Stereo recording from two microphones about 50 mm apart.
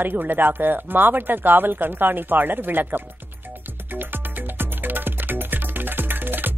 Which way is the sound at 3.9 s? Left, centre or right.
Right.